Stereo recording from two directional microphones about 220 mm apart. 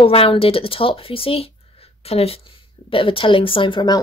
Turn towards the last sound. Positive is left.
turn(degrees=20)  # may be behind; listen again after turning